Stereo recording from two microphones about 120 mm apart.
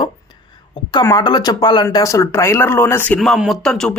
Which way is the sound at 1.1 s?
35° left (ahead or behind).